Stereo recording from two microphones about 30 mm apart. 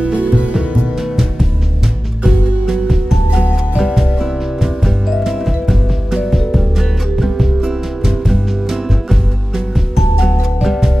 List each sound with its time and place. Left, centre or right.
0.0 s music: right
2.2 s music: centre